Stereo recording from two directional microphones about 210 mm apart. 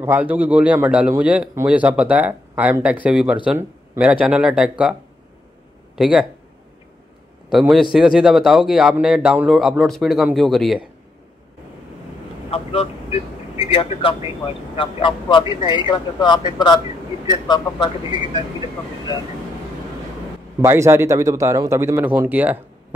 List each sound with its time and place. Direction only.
0.0 s a man's voice: 10° right (ahead or behind)
5.9 s speech: 5° right (ahead or behind)
7.5 s a man's voice: centre (ahead or behind)
12.4 s speech: 30° left (ahead or behind)
20.6 s a man's voice: 10° right (ahead or behind)